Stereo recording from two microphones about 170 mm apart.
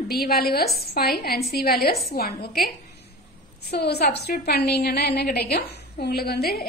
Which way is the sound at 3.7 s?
75° left (ahead or behind).